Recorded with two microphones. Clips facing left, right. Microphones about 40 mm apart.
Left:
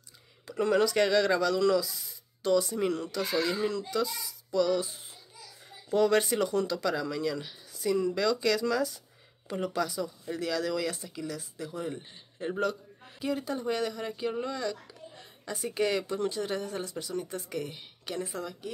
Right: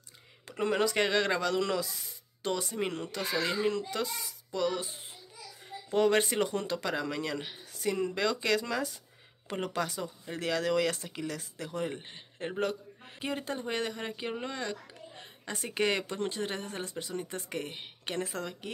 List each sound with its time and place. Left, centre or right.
0.5 s speech: right
5.9 s speech: right
9.5 s speech: right
12.4 s speech: right
14.4 s a sound: right
15.5 s speech: right
18.2 s a woman's voice: right